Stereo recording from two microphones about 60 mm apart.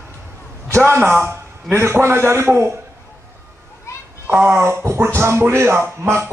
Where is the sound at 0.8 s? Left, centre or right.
Right.